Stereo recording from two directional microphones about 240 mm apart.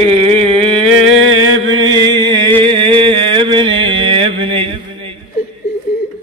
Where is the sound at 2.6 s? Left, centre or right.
Right.